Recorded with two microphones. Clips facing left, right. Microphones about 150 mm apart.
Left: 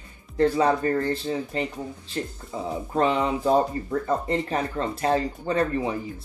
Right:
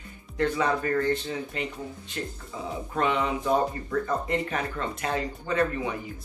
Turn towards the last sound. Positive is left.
turn(degrees=30)  # may be behind; listen again after turning